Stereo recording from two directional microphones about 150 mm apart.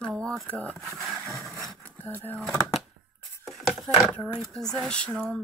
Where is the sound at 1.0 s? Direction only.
15° left (ahead or behind).